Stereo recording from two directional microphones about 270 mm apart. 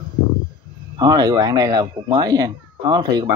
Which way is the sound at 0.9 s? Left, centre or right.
Centre.